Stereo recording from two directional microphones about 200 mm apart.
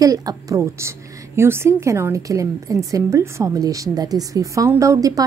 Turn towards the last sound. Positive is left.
turn(degrees=-15)  # may be behind; listen again after turning